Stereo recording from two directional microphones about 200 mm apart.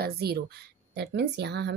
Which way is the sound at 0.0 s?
50° right (ahead or behind).